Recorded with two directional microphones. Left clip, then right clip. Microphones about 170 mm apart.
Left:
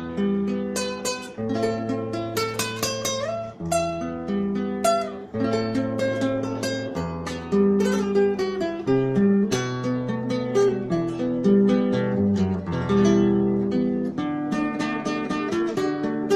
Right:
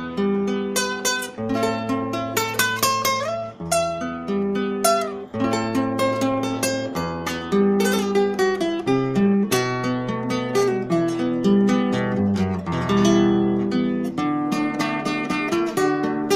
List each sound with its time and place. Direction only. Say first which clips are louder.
0.2 s music: right 4 dB; 20° right (ahead or behind)
4.8 s music: right 1 dB; 25° right (ahead or behind)
7.5 s music: right 1 dB; 30° right (ahead or behind)